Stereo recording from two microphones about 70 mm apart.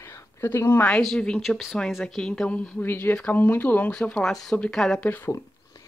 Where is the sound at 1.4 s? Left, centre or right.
Centre.